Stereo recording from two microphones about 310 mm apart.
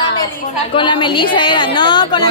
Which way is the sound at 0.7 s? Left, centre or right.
Centre.